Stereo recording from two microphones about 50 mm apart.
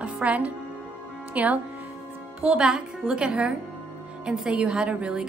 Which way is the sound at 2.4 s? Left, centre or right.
Centre.